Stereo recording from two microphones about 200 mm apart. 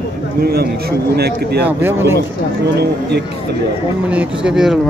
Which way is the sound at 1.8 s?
10° right (ahead or behind).